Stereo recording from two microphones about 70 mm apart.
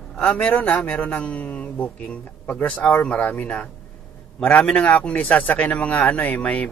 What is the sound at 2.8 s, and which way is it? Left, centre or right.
A man's voice, left.